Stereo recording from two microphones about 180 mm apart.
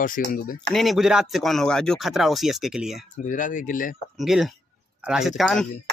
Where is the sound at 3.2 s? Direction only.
45° left (ahead or behind).